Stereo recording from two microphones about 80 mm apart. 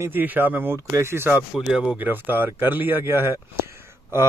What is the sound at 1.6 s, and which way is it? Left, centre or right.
Speech, centre.